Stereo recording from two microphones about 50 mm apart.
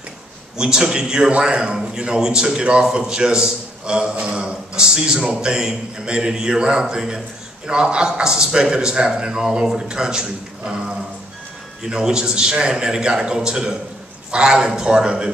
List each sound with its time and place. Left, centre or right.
0.6 s a man's voice: centre